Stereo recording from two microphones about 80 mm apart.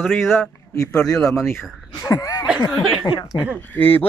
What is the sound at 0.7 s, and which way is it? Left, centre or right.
Speech, left.